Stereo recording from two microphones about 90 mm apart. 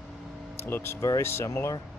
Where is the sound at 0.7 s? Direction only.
25° left (ahead or behind).